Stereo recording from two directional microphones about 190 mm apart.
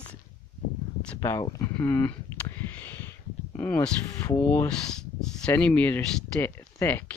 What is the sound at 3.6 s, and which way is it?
Speech, 10° left (ahead or behind).